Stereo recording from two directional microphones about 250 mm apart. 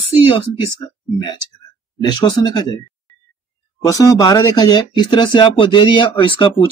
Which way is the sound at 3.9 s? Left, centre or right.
Centre.